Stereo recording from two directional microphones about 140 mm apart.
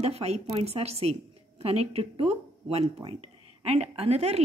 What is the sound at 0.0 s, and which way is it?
A woman's voice, 45° right (ahead or behind).